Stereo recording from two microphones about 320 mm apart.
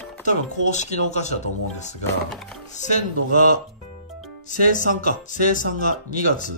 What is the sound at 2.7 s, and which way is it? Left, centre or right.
Speech, left.